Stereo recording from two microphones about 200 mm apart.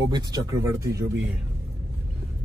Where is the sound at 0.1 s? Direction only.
20° right (ahead or behind).